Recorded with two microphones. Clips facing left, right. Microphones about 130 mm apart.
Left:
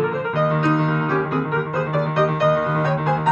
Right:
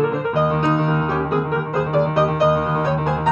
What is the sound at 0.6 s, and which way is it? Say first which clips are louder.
Music: right 1 dB; 5° right (ahead or behind).